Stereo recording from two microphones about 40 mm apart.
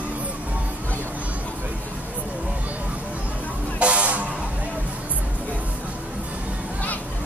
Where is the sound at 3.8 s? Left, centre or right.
Right.